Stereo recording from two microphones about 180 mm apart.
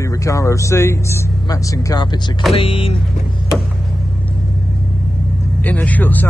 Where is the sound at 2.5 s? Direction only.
30° left (ahead or behind).